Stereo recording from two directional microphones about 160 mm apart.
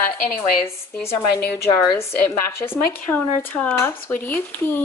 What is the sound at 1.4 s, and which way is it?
Speech, 90° left.